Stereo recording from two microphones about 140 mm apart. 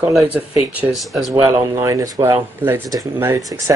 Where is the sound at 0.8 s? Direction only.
Centre (ahead or behind).